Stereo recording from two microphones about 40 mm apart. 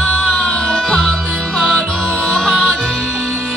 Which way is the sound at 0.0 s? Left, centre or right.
Left.